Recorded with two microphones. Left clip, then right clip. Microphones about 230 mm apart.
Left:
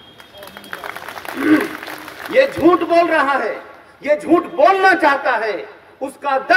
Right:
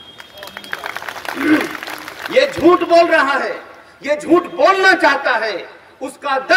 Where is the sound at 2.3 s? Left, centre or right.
Right.